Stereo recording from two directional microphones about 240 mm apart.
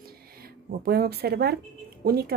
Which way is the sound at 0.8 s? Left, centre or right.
Right.